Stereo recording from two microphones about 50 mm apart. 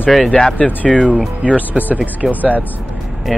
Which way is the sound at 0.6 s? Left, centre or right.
Left.